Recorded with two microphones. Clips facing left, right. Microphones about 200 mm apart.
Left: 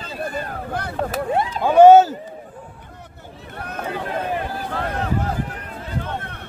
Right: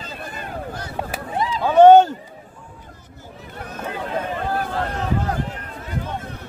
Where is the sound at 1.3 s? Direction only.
60° left (ahead or behind).